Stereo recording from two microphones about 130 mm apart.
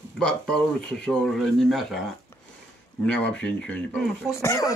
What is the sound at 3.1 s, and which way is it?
A man's voice, 10° left (ahead or behind).